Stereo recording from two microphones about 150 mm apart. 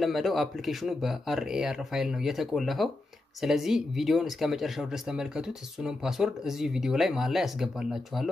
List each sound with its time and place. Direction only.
0.0 s speech: centre (ahead or behind)